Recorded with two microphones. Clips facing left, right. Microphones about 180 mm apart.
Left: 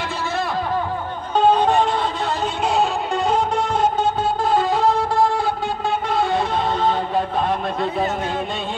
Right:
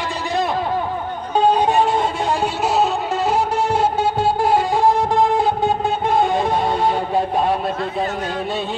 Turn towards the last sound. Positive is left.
turn(degrees=-10)  # may be behind; listen again after turning